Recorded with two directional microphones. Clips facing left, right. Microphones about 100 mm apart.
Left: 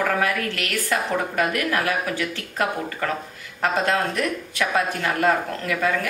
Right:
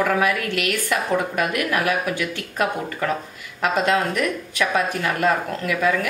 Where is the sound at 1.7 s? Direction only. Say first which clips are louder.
Right 2 dB; 20° right (ahead or behind).